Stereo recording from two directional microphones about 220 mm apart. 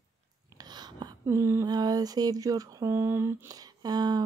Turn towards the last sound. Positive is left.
turn(degrees=-20)  # may be behind; listen again after turning